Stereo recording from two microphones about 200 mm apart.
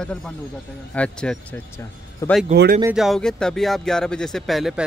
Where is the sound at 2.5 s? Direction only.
50° right (ahead or behind).